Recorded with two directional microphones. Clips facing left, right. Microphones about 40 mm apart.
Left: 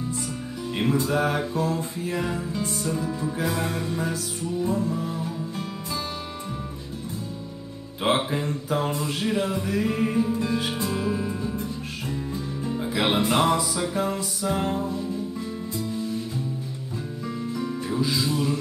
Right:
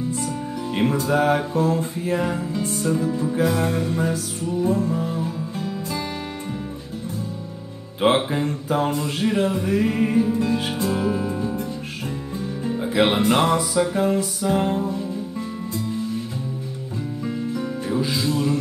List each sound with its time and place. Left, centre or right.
0.1 s music: right
8.0 s music: right
9.9 s music: right
12.9 s music: right
14.5 s music: right
17.6 s music: right